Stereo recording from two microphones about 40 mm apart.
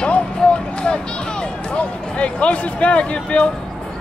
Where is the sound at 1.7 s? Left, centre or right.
Left.